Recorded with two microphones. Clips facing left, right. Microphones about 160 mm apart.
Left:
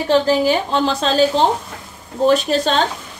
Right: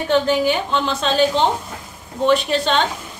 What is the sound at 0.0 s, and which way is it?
A woman's voice, 35° left (ahead or behind).